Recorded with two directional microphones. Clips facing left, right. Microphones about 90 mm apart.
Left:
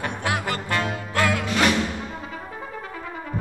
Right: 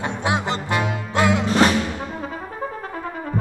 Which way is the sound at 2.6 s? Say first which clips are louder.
Right 5 dB; 40° right (ahead or behind).